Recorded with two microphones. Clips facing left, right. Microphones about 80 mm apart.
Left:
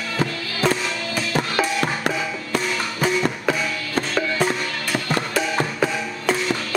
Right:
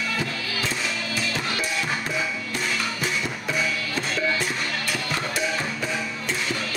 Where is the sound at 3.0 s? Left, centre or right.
Left.